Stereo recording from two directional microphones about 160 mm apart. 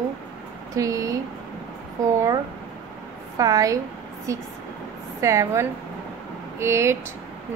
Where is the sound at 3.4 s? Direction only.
20° right (ahead or behind).